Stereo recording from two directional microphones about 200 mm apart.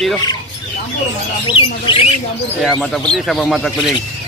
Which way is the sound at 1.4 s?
25° left (ahead or behind).